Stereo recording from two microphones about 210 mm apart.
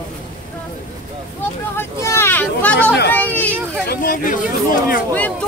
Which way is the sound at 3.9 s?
40° left (ahead or behind).